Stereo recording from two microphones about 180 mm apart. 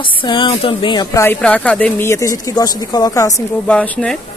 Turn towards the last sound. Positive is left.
turn(degrees=5)  # may be behind; listen again after turning